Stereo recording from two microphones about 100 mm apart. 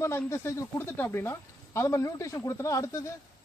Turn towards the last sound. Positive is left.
turn(degrees=30)  # may be behind; listen again after turning